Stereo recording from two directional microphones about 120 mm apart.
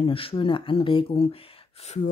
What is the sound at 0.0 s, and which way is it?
Speech, 50° left (ahead or behind).